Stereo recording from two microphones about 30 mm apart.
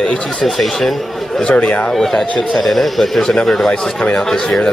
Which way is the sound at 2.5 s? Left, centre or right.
Centre.